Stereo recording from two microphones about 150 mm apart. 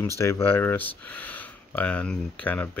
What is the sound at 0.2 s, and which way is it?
Speech, 15° left (ahead or behind).